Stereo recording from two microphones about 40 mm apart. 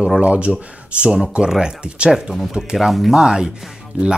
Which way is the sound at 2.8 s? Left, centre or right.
Centre.